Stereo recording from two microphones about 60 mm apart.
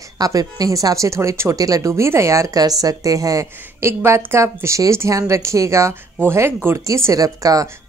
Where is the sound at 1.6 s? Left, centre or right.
Right.